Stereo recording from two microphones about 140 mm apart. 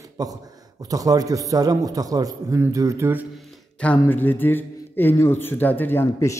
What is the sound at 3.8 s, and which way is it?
Speech, 10° left (ahead or behind).